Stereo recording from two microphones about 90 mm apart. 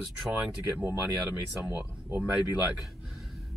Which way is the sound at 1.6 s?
15° right (ahead or behind).